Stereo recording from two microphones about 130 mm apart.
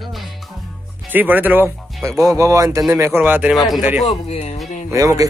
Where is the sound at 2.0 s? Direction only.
25° right (ahead or behind).